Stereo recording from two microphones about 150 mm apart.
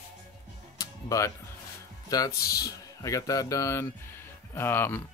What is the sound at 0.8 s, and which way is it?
Music, 20° left (ahead or behind).